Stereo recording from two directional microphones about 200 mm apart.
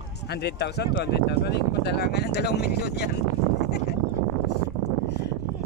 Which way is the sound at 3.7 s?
55° left (ahead or behind).